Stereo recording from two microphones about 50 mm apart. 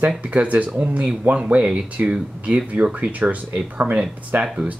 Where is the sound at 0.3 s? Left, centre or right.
Right.